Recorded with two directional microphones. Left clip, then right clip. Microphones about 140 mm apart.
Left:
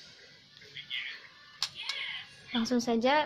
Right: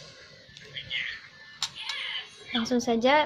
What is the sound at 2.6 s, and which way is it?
Speech, 15° left (ahead or behind).